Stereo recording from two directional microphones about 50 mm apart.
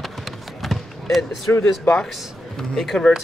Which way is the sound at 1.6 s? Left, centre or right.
Centre.